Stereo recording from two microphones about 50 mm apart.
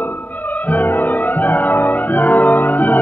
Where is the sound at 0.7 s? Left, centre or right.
Left.